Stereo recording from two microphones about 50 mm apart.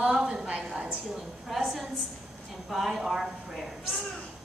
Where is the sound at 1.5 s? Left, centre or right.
Centre.